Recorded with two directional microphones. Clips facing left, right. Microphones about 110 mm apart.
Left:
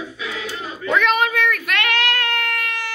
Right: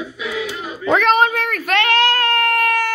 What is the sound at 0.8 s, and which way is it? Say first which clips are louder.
Baby cry: right 4 dB; 35° right (ahead or behind).